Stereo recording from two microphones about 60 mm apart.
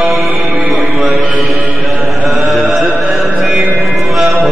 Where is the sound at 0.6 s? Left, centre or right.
Centre.